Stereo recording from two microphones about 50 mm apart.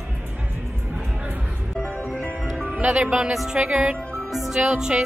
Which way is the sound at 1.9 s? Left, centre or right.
Left.